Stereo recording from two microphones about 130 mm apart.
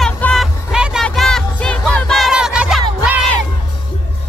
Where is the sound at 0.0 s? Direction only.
5° left (ahead or behind).